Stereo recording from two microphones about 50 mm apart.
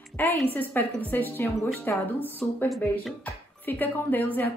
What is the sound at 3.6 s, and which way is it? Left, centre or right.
Speech, left.